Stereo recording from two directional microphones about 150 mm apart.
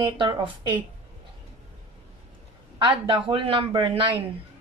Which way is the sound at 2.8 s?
35° right (ahead or behind).